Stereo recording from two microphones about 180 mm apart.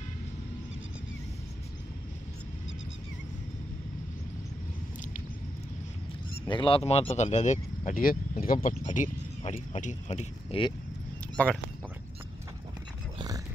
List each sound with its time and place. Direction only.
6.4 s speech: 25° left (ahead or behind)
11.4 s speech: 10° left (ahead or behind)